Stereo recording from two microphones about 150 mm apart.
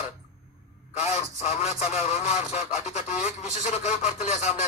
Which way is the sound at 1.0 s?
45° left (ahead or behind).